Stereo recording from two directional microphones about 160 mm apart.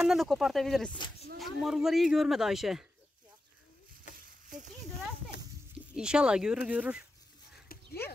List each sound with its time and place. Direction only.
0.0 s speech: centre (ahead or behind)
5.9 s speech: 5° right (ahead or behind)